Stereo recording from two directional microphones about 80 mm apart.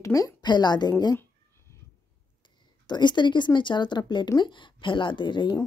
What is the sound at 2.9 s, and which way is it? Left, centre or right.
A woman's voice, left.